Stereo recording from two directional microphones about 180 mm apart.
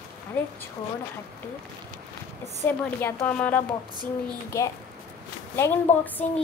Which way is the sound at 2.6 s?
10° left (ahead or behind).